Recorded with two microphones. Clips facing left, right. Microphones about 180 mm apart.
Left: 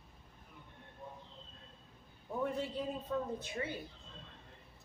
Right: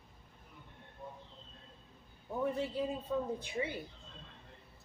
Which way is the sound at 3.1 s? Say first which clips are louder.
Right 2 dB; 10° right (ahead or behind).